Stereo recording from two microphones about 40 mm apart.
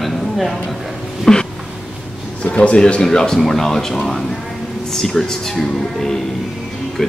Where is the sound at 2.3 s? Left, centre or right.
Left.